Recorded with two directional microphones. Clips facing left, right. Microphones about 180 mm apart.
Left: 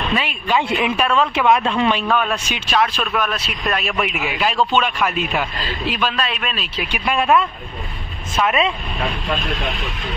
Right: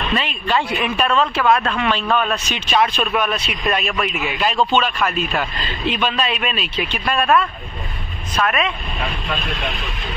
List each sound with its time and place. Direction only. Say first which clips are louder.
0.1 s speech: even; 10° left (ahead or behind)
0.7 s speech: left 2 dB; 20° left (ahead or behind)
0.9 s speech: right 3 dB; 10° left (ahead or behind)
2.0 s a man's voice: even; 5° left (ahead or behind)
6.9 s speech: left 1 dB; 15° left (ahead or behind)